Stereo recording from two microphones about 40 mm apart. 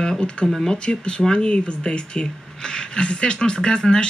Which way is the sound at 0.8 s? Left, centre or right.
Left.